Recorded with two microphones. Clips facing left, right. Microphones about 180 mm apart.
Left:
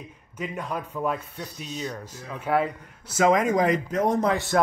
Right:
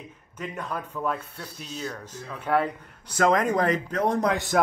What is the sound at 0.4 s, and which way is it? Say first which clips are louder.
Speech: left 2 dB; 10° left (ahead or behind).